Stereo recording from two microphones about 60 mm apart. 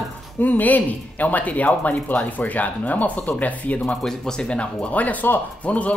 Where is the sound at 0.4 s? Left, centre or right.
Left.